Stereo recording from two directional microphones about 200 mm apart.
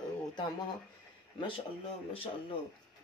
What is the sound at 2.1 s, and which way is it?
Speech, 25° left (ahead or behind).